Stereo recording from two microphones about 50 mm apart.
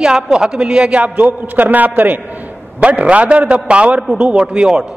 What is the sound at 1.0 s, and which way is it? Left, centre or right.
A man's voice, right.